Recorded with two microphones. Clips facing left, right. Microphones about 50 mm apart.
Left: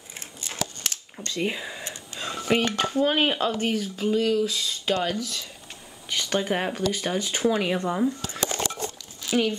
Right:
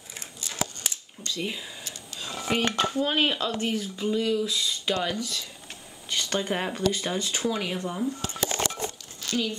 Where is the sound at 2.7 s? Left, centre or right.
Centre.